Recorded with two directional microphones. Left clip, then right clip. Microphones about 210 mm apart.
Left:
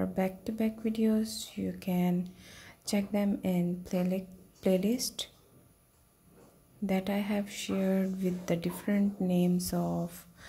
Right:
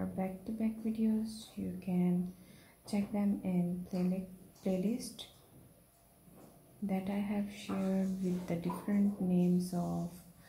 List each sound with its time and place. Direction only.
0.0 s speech: 40° left (ahead or behind)
6.9 s speech: 40° left (ahead or behind)